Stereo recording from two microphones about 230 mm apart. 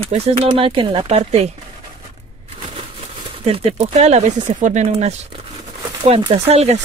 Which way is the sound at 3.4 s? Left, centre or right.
Right.